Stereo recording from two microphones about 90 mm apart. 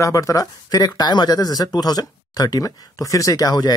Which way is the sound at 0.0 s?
35° left (ahead or behind).